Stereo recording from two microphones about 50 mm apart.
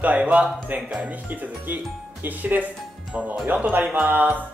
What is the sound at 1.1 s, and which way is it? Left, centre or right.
Speech, right.